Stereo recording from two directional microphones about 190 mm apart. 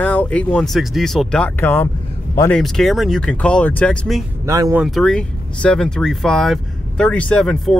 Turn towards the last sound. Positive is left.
turn(degrees=5)  # may be behind; listen again after turning